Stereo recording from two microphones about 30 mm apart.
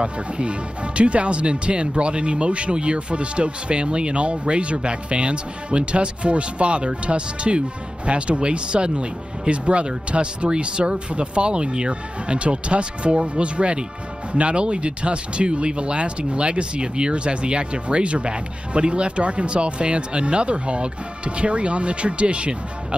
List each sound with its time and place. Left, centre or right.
0.0 s speech: right